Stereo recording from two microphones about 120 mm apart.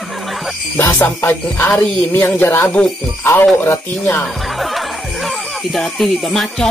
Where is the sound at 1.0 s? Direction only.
15° left (ahead or behind).